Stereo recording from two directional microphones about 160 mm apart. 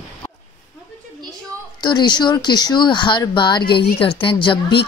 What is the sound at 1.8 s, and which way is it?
Speech, 25° left (ahead or behind).